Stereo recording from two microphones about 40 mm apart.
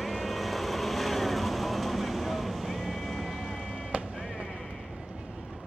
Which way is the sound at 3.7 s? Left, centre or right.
Right.